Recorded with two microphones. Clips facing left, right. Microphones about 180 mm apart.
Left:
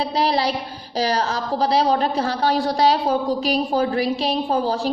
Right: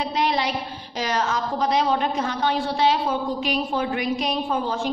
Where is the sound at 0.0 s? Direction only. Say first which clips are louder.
Left 3 dB; 35° left (ahead or behind).